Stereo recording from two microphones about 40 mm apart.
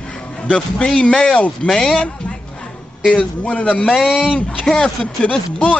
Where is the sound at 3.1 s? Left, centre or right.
Left.